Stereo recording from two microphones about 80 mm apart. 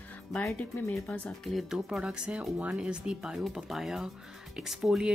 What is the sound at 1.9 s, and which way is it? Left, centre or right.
Speech, centre.